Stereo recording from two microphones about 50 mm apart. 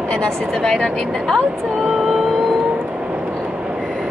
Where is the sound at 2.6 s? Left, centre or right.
Right.